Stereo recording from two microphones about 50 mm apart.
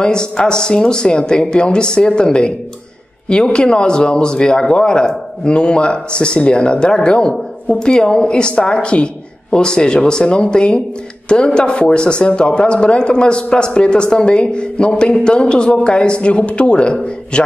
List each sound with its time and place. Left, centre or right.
0.0 s a woman's voice: centre